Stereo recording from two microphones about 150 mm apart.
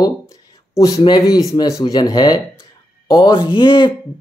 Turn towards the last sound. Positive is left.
turn(degrees=30)  # may be behind; listen again after turning